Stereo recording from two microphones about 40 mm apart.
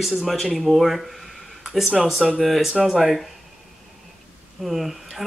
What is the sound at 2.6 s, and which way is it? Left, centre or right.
Speech, centre.